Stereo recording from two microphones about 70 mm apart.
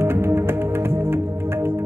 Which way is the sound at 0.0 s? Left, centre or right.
Right.